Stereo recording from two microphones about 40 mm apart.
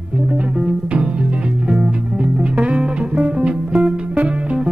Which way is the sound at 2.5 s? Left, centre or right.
Right.